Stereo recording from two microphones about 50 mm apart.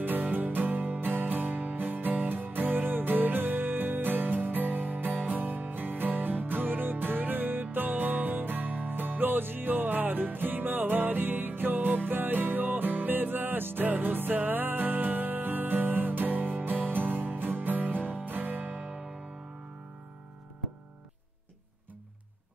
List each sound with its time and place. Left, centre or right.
0.0 s music: right